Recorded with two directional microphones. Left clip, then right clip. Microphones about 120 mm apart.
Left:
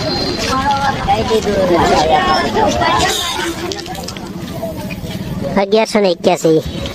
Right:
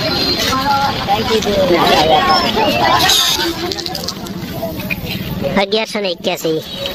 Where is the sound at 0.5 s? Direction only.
Centre (ahead or behind).